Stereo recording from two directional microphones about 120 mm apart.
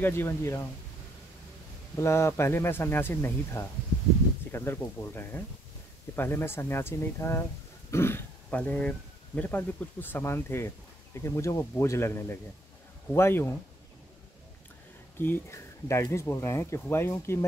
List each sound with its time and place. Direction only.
0.0 s speech: 20° left (ahead or behind)
2.0 s speech: 25° left (ahead or behind)
15.1 s speech: 15° left (ahead or behind)